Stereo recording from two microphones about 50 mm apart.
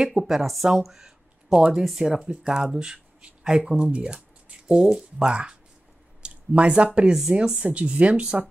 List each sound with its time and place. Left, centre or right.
0.0 s speech: centre
6.2 s a sound: right
7.1 s speech: centre